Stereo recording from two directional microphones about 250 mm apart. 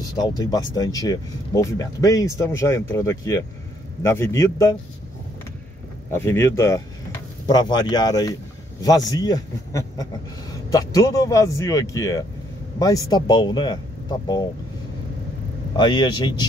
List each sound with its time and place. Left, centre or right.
0.2 s speech: centre
6.1 s speech: centre
15.7 s speech: centre